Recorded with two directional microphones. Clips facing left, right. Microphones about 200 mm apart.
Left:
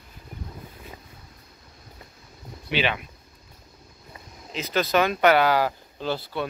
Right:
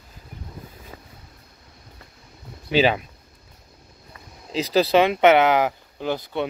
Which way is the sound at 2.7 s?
40° right (ahead or behind).